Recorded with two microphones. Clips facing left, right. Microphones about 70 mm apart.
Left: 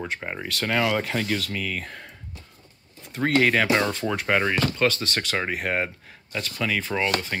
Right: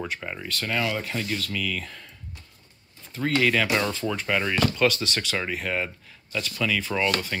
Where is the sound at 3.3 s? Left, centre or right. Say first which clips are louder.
Left 2 dB; left.